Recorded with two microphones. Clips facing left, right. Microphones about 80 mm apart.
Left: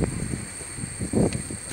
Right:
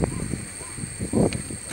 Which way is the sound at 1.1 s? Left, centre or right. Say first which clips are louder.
Right 1 dB; centre.